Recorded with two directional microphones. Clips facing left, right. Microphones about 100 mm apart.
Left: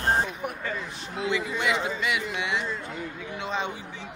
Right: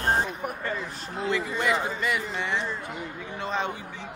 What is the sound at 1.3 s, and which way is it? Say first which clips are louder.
Speech: right 1 dB; 5° left (ahead or behind).